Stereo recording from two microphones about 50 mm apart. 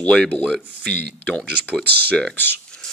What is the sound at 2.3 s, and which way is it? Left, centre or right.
Speech, left.